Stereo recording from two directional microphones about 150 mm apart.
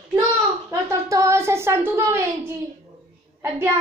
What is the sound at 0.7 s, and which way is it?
A woman's voice, 20° right (ahead or behind).